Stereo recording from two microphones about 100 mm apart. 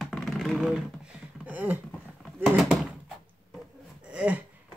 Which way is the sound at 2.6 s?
Centre (ahead or behind).